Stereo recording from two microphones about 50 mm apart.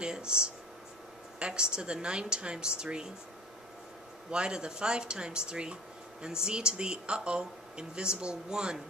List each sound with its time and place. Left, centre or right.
0.0 s speech: centre
4.3 s speech: centre